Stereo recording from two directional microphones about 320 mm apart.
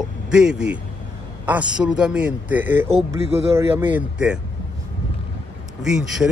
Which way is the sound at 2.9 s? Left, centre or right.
Centre.